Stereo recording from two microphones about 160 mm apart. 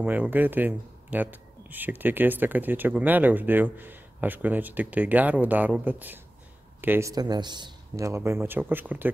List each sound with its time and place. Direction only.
0.0 s speech: 10° right (ahead or behind)